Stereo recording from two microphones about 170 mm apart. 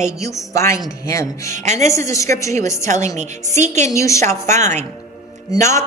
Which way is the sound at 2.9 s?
45° right (ahead or behind).